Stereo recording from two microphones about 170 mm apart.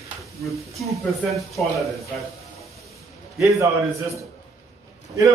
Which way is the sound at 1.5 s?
Centre (ahead or behind).